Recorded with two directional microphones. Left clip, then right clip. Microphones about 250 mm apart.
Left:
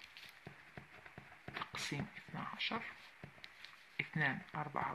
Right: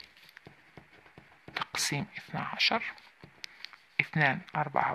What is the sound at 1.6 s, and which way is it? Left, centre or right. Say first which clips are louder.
Speech: right 11 dB; right.